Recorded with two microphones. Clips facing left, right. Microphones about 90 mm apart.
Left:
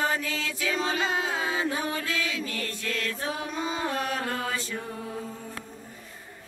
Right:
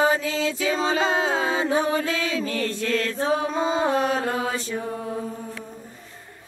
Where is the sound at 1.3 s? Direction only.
30° right (ahead or behind).